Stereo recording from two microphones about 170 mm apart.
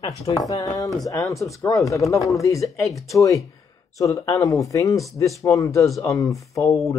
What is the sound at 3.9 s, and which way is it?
Speech, 20° left (ahead or behind).